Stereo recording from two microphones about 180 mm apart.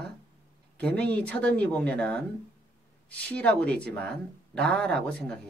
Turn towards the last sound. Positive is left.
turn(degrees=5)  # may be behind; listen again after turning